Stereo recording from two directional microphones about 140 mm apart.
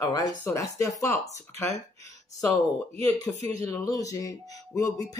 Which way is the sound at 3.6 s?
25° left (ahead or behind).